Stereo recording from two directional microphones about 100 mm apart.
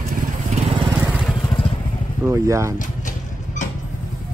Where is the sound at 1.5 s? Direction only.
60° left (ahead or behind).